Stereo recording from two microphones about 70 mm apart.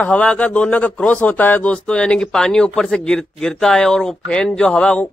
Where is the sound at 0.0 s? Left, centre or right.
Centre.